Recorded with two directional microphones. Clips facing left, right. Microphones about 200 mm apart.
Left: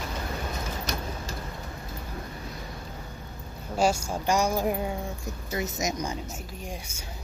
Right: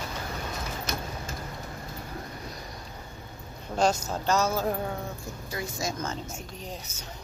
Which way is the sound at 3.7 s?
10° left (ahead or behind).